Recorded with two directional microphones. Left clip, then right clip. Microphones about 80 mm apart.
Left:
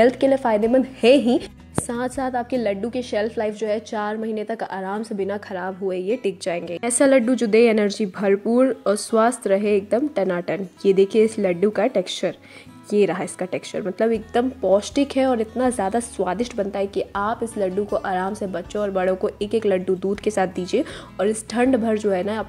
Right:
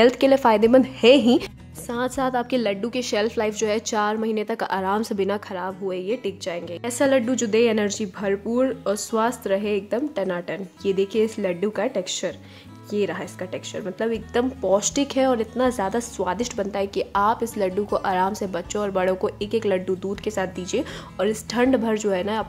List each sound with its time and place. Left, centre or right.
0.0 s a woman's voice: right
1.0 s a woman's voice: centre; by 4.0 s right
4.0 s a woman's voice: centre; by 5.3 s right
5.5 s a woman's voice: centre
6.2 s a woman's voice: left
7.2 s speech: centre
8.2 s a woman's voice: left
12.9 s speech: left
13.9 s a woman's voice: left
14.3 s a woman's voice: centre
19.4 s a woman's voice: centre
20.0 s speech: left
21.2 s a woman's voice: centre